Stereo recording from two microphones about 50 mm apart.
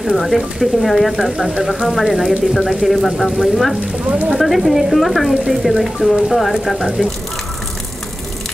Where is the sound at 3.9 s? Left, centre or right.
Right.